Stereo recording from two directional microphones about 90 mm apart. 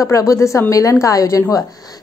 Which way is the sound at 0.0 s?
35° left (ahead or behind).